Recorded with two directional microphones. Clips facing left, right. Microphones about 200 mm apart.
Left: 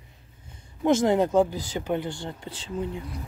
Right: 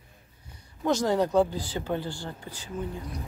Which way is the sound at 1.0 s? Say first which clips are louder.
Right 1 dB; 20° left (ahead or behind).